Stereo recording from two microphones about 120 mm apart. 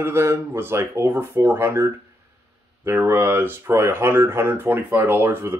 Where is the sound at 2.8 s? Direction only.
20° right (ahead or behind).